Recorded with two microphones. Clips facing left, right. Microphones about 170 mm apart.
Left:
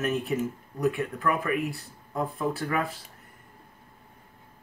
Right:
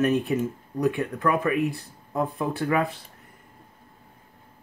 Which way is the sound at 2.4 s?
20° right (ahead or behind).